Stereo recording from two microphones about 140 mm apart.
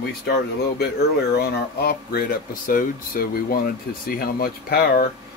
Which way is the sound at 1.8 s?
85° left.